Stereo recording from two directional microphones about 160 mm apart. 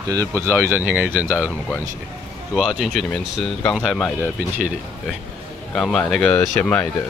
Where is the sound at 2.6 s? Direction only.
Centre (ahead or behind).